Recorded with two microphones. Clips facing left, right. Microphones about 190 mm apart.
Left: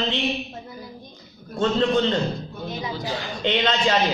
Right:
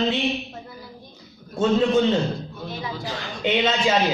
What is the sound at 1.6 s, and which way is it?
Speech, 5° right (ahead or behind).